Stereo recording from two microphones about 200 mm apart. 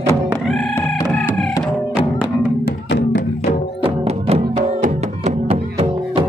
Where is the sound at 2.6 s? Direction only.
60° left (ahead or behind).